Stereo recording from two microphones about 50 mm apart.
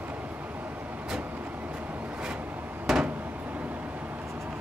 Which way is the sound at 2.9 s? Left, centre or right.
Centre.